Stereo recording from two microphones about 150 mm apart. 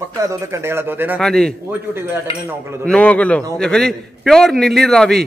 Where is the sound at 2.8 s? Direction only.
10° left (ahead or behind).